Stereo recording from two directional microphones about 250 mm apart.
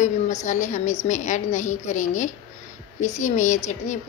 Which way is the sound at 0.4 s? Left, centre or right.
Left.